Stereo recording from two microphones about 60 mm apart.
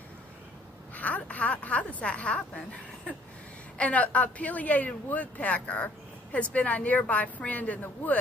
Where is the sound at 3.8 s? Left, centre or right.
Left.